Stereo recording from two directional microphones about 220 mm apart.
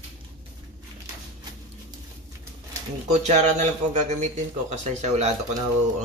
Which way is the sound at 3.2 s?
30° right (ahead or behind).